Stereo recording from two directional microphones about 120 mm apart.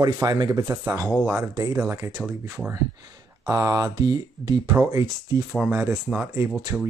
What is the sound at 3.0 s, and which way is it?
Speech, 35° right (ahead or behind).